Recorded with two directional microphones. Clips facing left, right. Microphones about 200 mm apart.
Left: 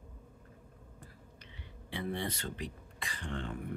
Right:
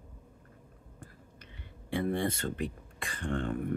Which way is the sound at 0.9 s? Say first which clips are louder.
Right 6 dB; 50° right (ahead or behind).